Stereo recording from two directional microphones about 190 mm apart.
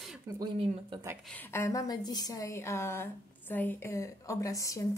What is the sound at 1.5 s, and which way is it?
A woman's voice, 15° left (ahead or behind).